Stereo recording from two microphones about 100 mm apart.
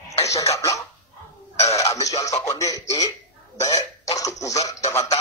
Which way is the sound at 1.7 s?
30° left (ahead or behind).